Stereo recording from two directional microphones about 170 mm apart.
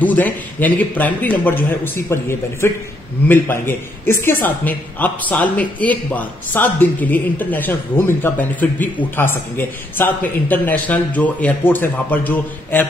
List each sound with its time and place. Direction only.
0.0 s a man's voice: 10° left (ahead or behind)